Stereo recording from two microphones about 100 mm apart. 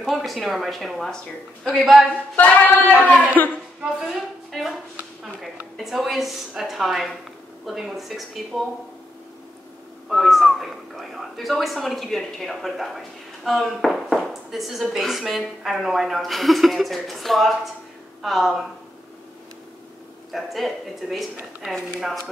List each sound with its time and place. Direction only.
0.0 s a woman's voice: centre (ahead or behind)
2.3 s singing: 15° left (ahead or behind)
3.4 s a woman's voice: 20° left (ahead or behind)
4.0 s a woman's voice: centre (ahead or behind)
5.8 s a woman's voice: centre (ahead or behind)
10.0 s a woman's voice: centre (ahead or behind)
20.3 s a woman's voice: centre (ahead or behind)